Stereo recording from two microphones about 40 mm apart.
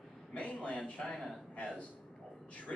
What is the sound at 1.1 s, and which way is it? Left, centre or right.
Speech, centre.